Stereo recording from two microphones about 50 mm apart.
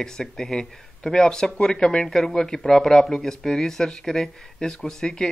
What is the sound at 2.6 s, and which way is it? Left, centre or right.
Speech, centre.